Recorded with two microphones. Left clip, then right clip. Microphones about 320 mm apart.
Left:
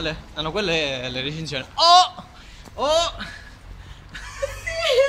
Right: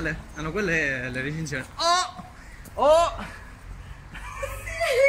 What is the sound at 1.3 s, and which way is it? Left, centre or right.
Mantra, centre.